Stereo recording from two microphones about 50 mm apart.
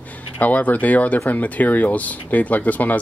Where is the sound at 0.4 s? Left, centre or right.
Left.